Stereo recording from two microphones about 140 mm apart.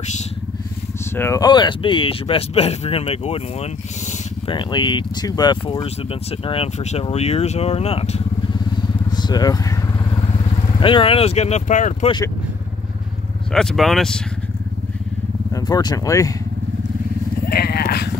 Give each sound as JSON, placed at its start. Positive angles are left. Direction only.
{"t": 1.1, "sound": "speech", "side_deg": 15}
{"t": 1.4, "sound": "speech", "side_deg": 30}
{"t": 4.5, "sound": "speech", "side_deg": 35}
{"t": 9.1, "sound": "vehicle", "side_deg": 30}
{"t": 10.8, "sound": "speech", "side_deg": 40}
{"t": 13.5, "sound": "speech", "side_deg": 5}
{"t": 15.5, "sound": "speech", "side_deg": 30}
{"t": 17.5, "sound": "vehicle", "side_deg": 90}